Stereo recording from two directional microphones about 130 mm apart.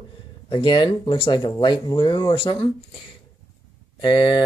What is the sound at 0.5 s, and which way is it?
Speech, 40° left (ahead or behind).